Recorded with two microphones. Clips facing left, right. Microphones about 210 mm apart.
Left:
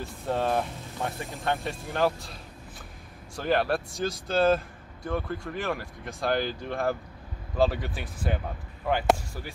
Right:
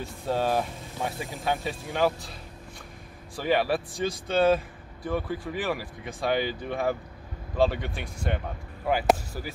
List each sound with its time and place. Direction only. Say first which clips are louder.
0.0 s speech: right 1 dB; centre (ahead or behind)
3.3 s speech: right 1 dB; centre (ahead or behind)